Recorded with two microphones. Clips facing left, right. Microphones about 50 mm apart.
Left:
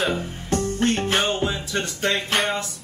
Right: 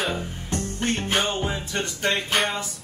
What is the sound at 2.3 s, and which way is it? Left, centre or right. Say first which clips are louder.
Music: left 1 dB; centre.